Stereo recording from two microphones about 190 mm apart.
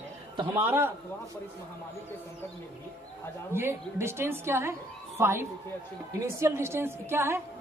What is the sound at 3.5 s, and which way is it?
A woman's voice, 15° right (ahead or behind).